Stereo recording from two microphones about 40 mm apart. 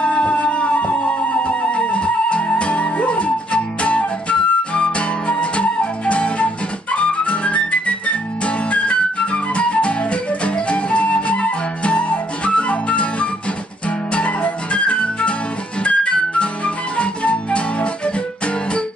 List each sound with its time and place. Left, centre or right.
0.0 s music: left
10.4 s flute: left
13.8 s music: left